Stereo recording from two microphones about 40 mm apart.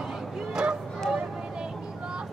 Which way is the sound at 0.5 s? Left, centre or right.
Centre.